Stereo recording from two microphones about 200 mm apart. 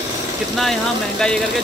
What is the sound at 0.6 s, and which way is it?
Speech, centre (ahead or behind).